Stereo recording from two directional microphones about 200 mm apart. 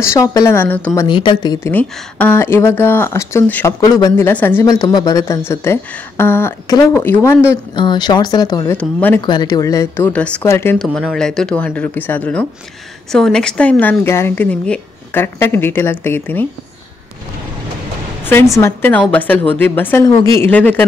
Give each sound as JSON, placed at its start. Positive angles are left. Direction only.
{"t": 0.0, "sound": "speech", "side_deg": 15}
{"t": 1.0, "sound": "speech", "side_deg": 25}
{"t": 1.7, "sound": "speech", "side_deg": 10}
{"t": 7.7, "sound": "speech", "side_deg": 25}
{"t": 8.7, "sound": "speech", "side_deg": 10}
{"t": 9.2, "sound": "speech", "side_deg": 20}
{"t": 18.6, "sound": "speech", "side_deg": 10}